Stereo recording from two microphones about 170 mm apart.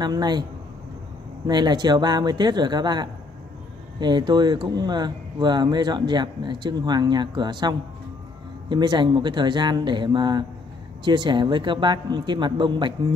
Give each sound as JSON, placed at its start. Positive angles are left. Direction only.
{"t": 0.0, "sound": "speech", "side_deg": -25}
{"t": 1.5, "sound": "speech", "side_deg": -25}